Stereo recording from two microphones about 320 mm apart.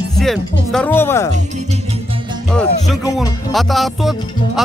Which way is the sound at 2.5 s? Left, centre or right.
Centre.